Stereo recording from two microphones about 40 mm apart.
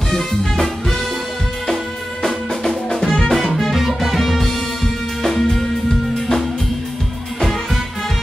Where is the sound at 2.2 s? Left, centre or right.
Centre.